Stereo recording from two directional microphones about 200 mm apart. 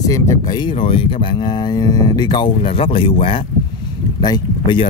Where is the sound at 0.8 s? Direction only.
25° left (ahead or behind).